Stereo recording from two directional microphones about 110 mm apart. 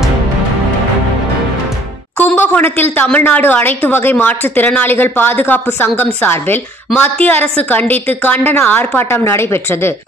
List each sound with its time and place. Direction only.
2.1 s a woman's voice: 15° left (ahead or behind)